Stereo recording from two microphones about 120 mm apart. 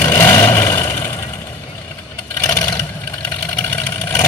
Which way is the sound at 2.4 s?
20° left (ahead or behind).